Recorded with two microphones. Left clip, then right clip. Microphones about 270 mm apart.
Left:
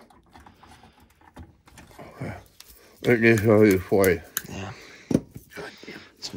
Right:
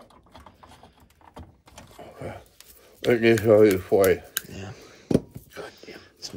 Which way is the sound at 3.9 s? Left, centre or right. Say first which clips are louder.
Right 1 dB; left.